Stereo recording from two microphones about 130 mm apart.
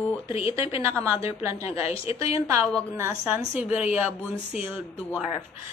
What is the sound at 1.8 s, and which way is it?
Speech, 45° left (ahead or behind).